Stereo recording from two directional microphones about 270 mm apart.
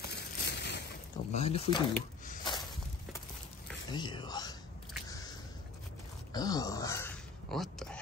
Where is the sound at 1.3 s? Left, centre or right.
Left.